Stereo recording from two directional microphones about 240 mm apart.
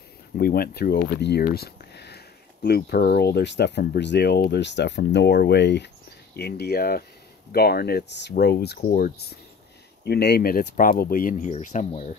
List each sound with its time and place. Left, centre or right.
0.4 s speech: left